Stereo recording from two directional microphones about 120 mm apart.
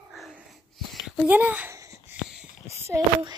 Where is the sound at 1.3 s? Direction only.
15° right (ahead or behind).